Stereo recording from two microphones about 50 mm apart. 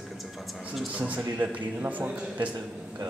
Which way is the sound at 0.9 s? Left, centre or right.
Right.